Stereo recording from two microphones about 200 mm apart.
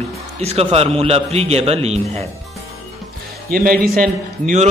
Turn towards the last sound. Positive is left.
turn(degrees=-40)  # may be behind; listen again after turning